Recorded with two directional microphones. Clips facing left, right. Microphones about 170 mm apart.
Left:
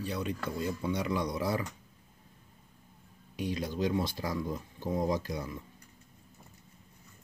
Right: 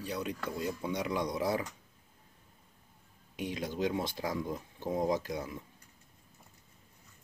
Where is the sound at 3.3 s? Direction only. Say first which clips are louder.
Left 2 dB; 20° right (ahead or behind).